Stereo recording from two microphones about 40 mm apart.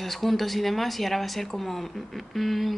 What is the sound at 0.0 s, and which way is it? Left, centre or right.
A woman's voice, centre.